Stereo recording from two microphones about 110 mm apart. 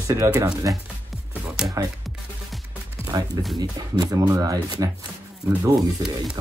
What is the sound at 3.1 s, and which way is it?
Speech, 40° right (ahead or behind).